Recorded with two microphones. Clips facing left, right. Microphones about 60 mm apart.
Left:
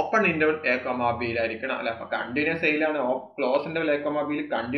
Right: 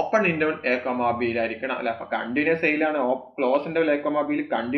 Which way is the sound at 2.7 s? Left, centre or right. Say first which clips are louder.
Right 2 dB; right.